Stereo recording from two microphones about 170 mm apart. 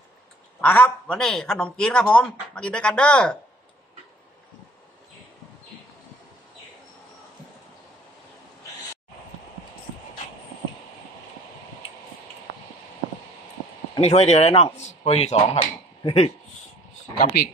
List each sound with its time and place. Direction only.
0.6 s a man's voice: 10° left (ahead or behind)
13.9 s speech: 40° left (ahead or behind)